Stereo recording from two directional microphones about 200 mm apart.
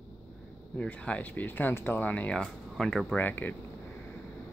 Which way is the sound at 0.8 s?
5° left (ahead or behind).